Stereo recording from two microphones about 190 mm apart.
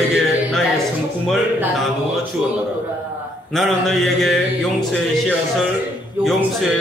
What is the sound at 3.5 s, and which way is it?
Speech, centre (ahead or behind).